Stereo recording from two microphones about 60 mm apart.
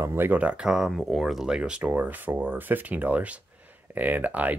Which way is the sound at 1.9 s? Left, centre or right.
Right.